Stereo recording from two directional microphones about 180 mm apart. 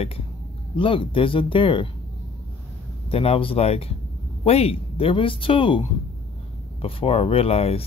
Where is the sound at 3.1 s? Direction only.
30° left (ahead or behind).